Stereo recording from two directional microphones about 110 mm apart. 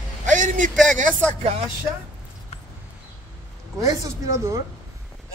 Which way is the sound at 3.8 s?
30° right (ahead or behind).